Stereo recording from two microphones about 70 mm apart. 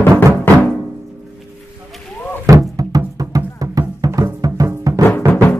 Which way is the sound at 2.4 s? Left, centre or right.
Right.